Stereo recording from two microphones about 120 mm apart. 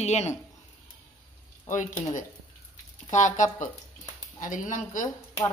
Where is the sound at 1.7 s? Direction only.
90° left.